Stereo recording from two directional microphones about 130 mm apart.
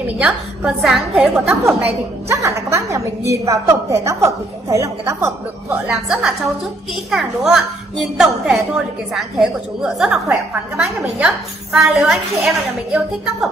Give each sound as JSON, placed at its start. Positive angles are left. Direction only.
{"t": 0.0, "sound": "a woman's voice", "side_deg": -5}
{"t": 1.5, "sound": "a woman's voice", "side_deg": -20}
{"t": 5.9, "sound": "a woman's voice", "side_deg": -5}